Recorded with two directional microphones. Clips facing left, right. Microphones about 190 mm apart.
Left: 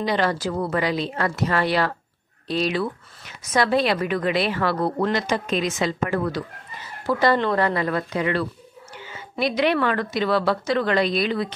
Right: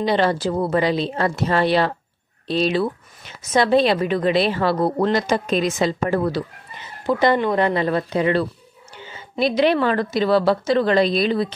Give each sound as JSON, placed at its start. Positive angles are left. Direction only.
{"t": 0.0, "sound": "a woman's voice", "side_deg": -30}